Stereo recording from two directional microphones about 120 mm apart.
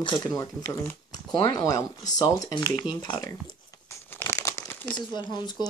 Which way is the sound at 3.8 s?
20° left (ahead or behind).